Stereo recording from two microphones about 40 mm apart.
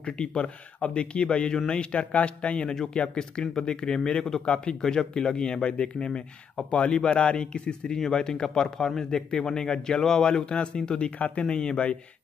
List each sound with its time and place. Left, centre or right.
0.0 s a man's voice: left